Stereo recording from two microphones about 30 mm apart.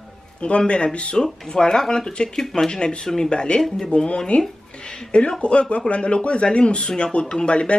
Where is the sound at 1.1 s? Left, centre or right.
Left.